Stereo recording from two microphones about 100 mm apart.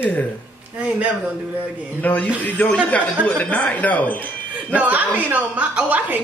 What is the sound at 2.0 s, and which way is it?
Speech, 15° left (ahead or behind).